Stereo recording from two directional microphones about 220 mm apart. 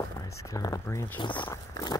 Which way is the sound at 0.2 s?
15° left (ahead or behind).